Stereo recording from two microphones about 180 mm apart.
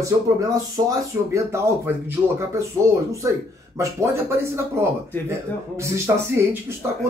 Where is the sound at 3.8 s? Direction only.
15° right (ahead or behind).